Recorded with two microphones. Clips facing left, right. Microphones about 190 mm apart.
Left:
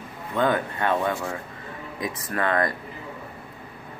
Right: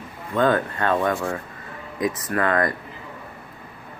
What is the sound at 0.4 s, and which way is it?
Speech, 15° left (ahead or behind).